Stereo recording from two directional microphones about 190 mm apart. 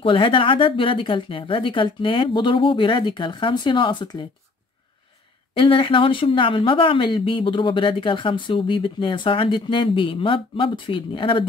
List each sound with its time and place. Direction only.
0.0 s speech: 30° left (ahead or behind)
5.5 s speech: 30° left (ahead or behind)